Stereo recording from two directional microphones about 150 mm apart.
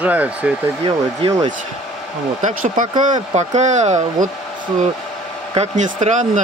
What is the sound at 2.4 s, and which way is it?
Speech, 55° right (ahead or behind).